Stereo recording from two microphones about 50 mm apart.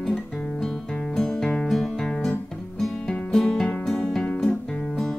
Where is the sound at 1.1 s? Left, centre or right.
Centre.